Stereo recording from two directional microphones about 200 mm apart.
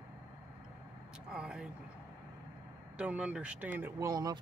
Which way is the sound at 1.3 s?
5° right (ahead or behind).